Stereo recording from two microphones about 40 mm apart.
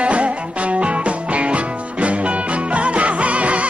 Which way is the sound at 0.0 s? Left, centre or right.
Right.